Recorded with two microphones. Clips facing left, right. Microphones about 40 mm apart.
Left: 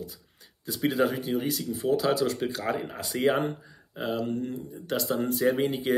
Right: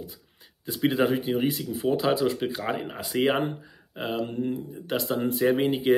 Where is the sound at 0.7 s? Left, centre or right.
Right.